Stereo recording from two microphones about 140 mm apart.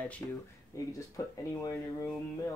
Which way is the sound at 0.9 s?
25° left (ahead or behind).